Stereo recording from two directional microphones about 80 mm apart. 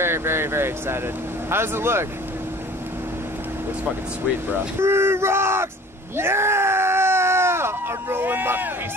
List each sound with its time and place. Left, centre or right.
0.0 s speech: right
4.7 s speech: right
6.1 s groan: right